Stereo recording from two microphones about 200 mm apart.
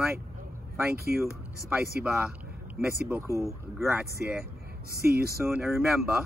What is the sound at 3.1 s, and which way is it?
Speech, 15° right (ahead or behind).